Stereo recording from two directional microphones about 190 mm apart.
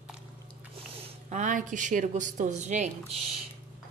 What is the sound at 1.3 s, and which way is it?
Speech, 40° right (ahead or behind).